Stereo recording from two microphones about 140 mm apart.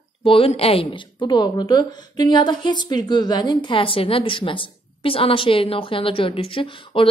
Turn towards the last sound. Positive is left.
turn(degrees=40)  # may be behind; listen again after turning